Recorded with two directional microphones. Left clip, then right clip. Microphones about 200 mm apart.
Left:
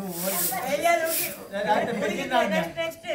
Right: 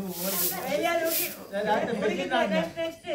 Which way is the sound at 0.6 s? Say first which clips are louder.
Left 3 dB; 60° left (ahead or behind).